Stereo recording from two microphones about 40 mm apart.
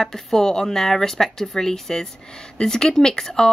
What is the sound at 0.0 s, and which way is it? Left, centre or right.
Speech, centre.